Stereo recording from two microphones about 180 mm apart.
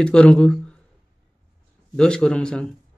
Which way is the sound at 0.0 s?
5° left (ahead or behind).